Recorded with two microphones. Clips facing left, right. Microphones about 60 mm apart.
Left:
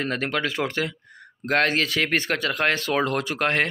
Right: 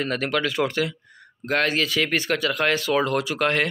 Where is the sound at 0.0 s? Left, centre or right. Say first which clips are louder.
Right 1 dB; left.